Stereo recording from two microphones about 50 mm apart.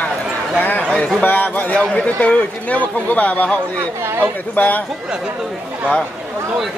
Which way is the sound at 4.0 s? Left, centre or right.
Right.